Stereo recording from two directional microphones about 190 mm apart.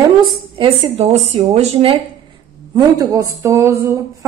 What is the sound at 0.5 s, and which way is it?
Speech, 30° right (ahead or behind).